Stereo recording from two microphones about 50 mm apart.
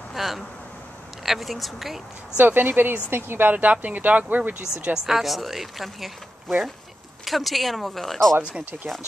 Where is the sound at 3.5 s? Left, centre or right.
Right.